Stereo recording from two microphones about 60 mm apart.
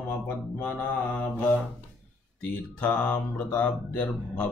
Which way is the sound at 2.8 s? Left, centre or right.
Left.